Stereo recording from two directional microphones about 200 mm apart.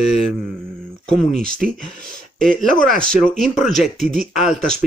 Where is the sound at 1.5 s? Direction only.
45° right (ahead or behind).